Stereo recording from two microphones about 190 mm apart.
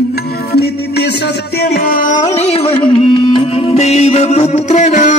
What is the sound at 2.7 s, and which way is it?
Music, 30° left (ahead or behind).